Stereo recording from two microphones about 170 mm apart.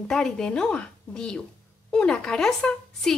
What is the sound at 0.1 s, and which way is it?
Speech, 5° left (ahead or behind).